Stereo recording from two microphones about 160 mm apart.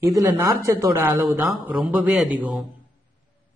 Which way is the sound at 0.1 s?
20° right (ahead or behind).